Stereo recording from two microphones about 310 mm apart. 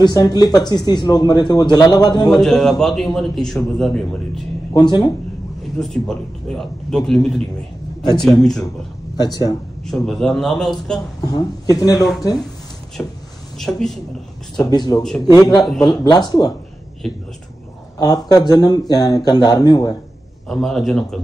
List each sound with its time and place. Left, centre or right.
0.0 s speech: centre
2.2 s a man's voice: centre
4.7 s speech: centre
5.8 s a man's voice: centre
9.2 s speech: centre
9.8 s a man's voice: centre
11.9 s a man's voice: centre
13.6 s a man's voice: centre
14.6 s speech: centre
17.0 s a man's voice: centre
17.9 s speech: centre
20.4 s a man's voice: centre